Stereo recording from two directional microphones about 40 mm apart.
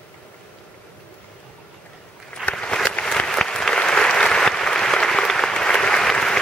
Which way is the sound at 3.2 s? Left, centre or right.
Centre.